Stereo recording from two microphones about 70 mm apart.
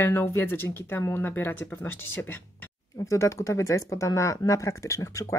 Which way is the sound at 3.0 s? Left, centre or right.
Left.